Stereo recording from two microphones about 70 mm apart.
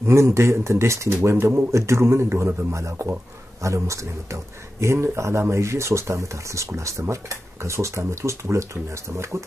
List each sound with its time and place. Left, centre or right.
0.0 s a man's voice: right